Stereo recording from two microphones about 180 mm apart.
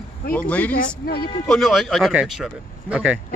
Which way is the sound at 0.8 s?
60° left (ahead or behind).